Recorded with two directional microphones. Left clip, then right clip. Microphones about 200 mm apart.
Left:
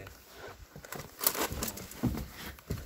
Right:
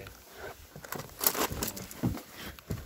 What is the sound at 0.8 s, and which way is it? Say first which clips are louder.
Crumpling: right 2 dB; 25° right (ahead or behind).